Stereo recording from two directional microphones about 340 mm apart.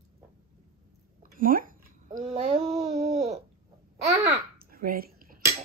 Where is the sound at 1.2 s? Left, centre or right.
Right; by 4.4 s centre.